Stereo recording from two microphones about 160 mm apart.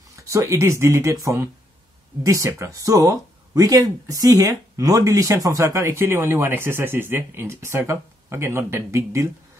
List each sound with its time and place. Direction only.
0.1 s speech: 20° right (ahead or behind)